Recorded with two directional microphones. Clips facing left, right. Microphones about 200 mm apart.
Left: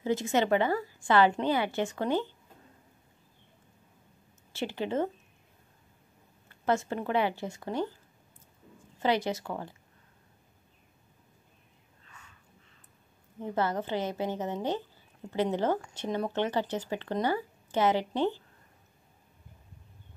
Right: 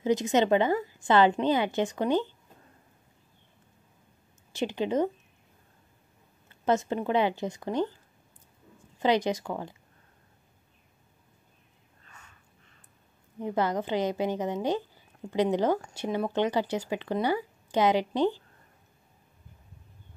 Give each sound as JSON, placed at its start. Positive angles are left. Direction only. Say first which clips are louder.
{"t": 0.0, "sound": "a woman's voice", "louder": "right 3 dB", "side_deg": -20}
{"t": 4.5, "sound": "speech", "louder": "right 4 dB", "side_deg": -15}
{"t": 6.5, "sound": "a woman's voice", "louder": "right 3 dB", "side_deg": -20}
{"t": 9.0, "sound": "speech", "louder": "right 3 dB", "side_deg": -15}
{"t": 12.1, "sound": "a sound", "louder": "right 1 dB", "side_deg": -45}
{"t": 13.4, "sound": "speech", "louder": "right 2 dB", "side_deg": -15}